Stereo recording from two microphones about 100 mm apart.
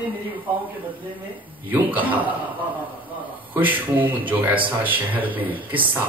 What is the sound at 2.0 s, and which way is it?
Speech, 15° right (ahead or behind).